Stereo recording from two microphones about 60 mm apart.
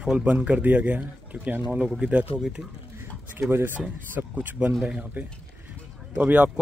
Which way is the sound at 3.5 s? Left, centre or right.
Right.